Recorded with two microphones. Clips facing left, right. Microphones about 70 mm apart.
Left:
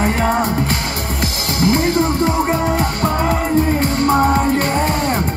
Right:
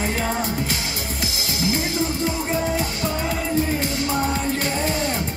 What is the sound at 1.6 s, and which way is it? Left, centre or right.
Music, left.